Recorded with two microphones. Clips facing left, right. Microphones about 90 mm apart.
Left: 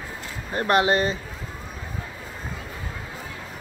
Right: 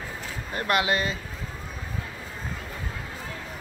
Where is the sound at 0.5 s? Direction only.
35° left (ahead or behind).